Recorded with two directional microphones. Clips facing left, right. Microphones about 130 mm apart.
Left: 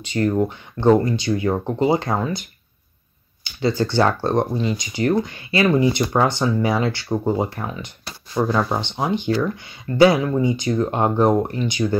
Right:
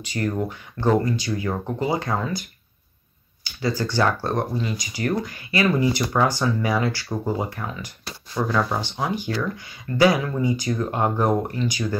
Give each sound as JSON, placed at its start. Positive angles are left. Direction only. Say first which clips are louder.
{"t": 0.0, "sound": "speech", "louder": "left 6 dB", "side_deg": 25}
{"t": 3.6, "sound": "speech", "louder": "left 4 dB", "side_deg": 25}